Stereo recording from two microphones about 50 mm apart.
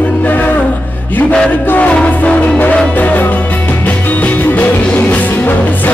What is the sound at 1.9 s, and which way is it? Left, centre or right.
Music, left.